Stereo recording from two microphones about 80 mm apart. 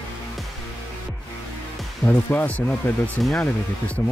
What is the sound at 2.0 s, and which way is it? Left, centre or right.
Speech, left.